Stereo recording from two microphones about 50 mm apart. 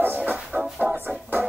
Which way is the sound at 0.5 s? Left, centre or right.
Right.